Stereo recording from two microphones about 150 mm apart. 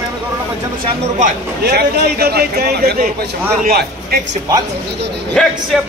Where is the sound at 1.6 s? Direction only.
90° right.